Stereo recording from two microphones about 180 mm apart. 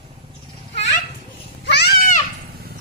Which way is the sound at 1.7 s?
65° left (ahead or behind).